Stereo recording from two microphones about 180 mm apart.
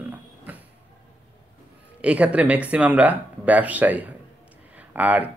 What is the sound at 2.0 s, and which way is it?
Speech, 5° right (ahead or behind).